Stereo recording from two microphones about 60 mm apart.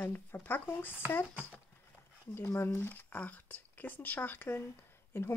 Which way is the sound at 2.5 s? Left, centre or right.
Left.